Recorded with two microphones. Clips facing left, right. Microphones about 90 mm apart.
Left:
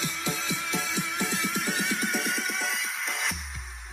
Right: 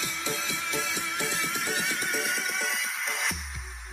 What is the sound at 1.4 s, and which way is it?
Music, centre (ahead or behind).